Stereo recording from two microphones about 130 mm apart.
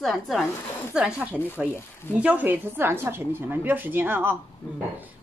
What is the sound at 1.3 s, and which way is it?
Speech, 15° left (ahead or behind).